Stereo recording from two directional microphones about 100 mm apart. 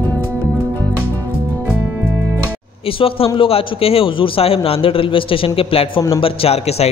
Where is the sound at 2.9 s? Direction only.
65° left (ahead or behind).